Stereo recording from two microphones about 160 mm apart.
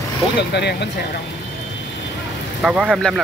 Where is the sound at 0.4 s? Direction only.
90° left.